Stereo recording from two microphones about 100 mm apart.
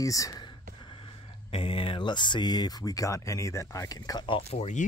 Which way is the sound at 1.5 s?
65° left (ahead or behind).